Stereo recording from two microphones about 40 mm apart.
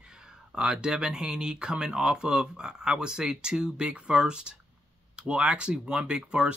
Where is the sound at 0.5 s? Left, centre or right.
Centre.